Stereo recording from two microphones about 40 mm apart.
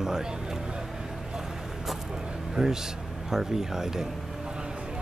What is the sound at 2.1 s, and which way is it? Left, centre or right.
Speech, centre.